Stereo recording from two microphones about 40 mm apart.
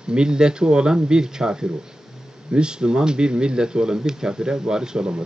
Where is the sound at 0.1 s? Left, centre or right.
Centre.